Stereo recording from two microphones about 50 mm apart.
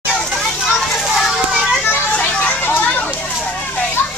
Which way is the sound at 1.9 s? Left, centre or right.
Left.